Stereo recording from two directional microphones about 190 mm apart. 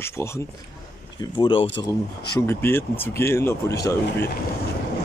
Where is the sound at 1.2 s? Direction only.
25° left (ahead or behind).